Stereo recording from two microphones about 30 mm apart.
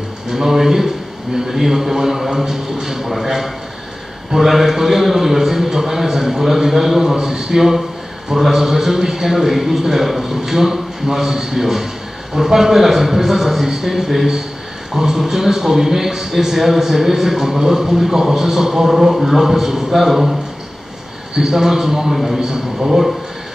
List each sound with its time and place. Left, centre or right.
0.3 s a man's voice: centre
4.4 s a man's voice: centre
19.6 s a man's voice: centre
20.1 s a man's voice: centre
21.4 s a man's voice: centre
22.1 s a man's voice: centre
22.4 s a man's voice: centre